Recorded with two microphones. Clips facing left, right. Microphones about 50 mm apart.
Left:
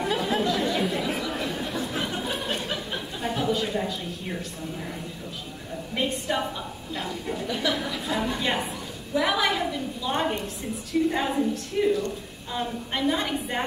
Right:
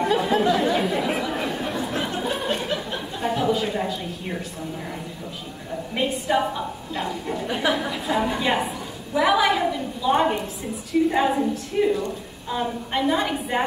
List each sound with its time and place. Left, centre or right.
0.0 s chatter: centre
5.9 s a woman's voice: centre
7.4 s a woman's voice: right; by 13.7 s centre